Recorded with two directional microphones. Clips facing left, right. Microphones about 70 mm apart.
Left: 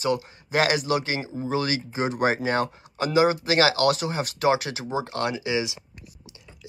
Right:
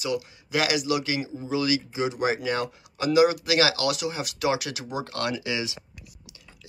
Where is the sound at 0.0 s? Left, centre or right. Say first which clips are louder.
Left 3 dB; left.